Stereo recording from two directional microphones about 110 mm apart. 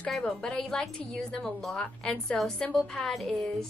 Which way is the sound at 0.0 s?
5° left (ahead or behind).